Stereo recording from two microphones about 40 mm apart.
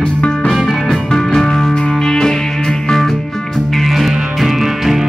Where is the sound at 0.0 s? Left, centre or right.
Left.